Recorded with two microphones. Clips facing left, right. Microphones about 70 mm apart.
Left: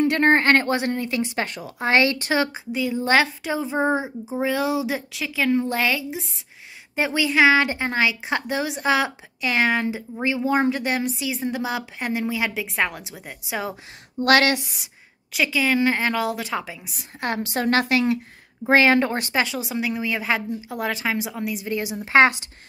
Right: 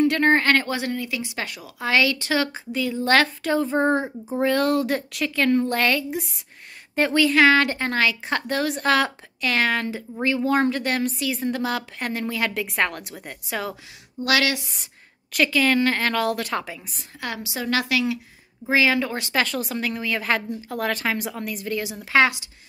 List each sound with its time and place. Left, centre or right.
0.0 s speech: left; by 6.4 s centre
7.0 s a woman's voice: centre
14.2 s a woman's voice: left
15.3 s speech: centre
17.2 s a woman's voice: left
19.3 s speech: centre
21.6 s a woman's voice: left